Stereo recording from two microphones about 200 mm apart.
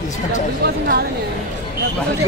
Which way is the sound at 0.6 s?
50° right (ahead or behind).